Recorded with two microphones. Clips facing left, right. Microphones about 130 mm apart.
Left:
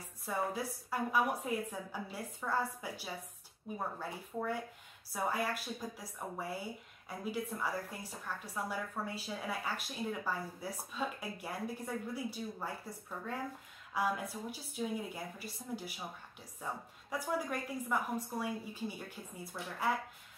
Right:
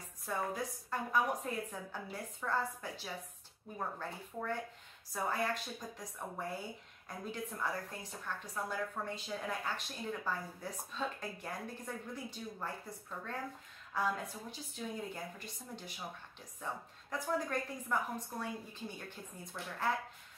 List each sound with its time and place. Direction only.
0.2 s a woman's voice: 10° left (ahead or behind)
13.9 s a woman's voice: 10° left (ahead or behind)